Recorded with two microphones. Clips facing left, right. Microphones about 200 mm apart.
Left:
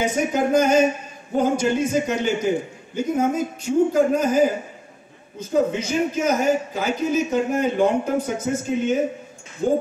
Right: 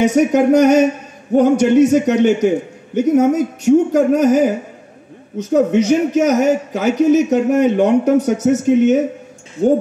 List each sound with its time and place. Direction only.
0.0 s a man's voice: 70° right (ahead or behind)